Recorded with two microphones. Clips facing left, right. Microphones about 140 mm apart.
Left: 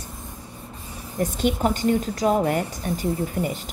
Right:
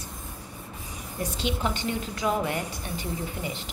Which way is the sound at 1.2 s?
50° left (ahead or behind).